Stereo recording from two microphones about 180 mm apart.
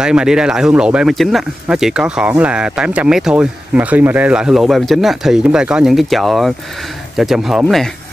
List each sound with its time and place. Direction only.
0.0 s speech: 5° right (ahead or behind)